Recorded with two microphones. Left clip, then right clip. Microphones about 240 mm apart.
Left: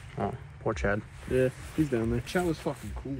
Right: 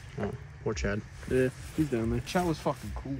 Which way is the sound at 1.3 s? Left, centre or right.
Left.